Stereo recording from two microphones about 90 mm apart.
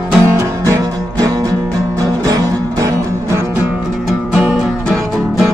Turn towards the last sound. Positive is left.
turn(degrees=-5)  # may be behind; listen again after turning